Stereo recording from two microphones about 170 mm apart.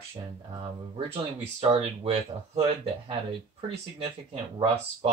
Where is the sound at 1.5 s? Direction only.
35° right (ahead or behind).